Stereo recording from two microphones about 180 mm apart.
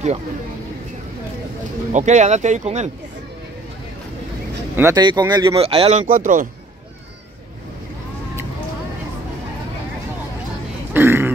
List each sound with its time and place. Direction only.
1.9 s speech: 40° right (ahead or behind)
4.7 s speech: 15° right (ahead or behind)
5.6 s speech: 35° right (ahead or behind)
10.9 s a sound: 10° right (ahead or behind)